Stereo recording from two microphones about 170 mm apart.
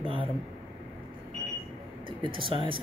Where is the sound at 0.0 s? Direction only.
30° right (ahead or behind).